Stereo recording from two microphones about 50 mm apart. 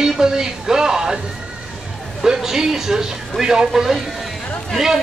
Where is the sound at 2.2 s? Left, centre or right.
Centre.